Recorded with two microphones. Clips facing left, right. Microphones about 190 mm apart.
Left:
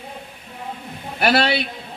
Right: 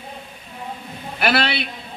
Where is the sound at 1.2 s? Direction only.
40° left (ahead or behind).